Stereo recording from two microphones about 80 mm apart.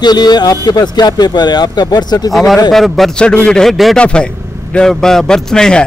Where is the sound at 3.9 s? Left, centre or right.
Centre.